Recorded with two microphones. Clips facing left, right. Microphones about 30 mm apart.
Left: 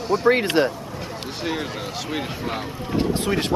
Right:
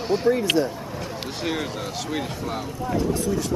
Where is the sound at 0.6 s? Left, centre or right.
Left.